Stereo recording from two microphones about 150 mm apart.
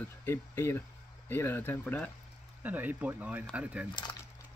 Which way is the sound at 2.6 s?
10° right (ahead or behind).